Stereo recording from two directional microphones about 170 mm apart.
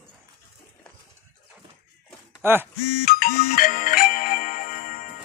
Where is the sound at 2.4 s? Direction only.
15° right (ahead or behind).